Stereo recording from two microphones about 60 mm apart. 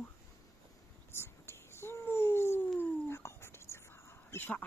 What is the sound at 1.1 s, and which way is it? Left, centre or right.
Whispering, left.